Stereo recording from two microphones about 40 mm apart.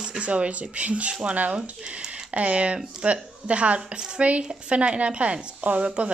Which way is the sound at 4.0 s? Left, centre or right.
Right.